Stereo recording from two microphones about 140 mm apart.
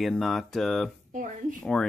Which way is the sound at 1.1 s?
70° right (ahead or behind).